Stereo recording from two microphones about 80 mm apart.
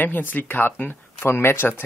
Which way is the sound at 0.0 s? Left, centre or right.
Left.